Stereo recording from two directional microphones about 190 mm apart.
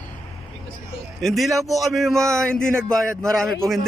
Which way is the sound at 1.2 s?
Centre (ahead or behind).